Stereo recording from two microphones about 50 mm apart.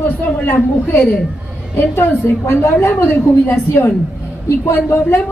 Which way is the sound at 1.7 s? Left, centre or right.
Left.